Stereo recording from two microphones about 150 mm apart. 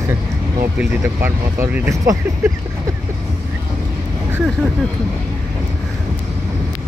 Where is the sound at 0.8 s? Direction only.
15° right (ahead or behind).